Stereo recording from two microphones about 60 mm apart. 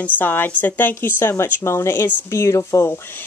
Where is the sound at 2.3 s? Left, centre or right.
Left.